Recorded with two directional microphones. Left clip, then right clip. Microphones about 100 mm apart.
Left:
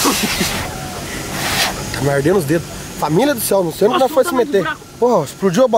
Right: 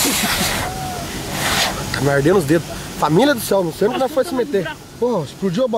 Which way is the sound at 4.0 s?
20° left (ahead or behind).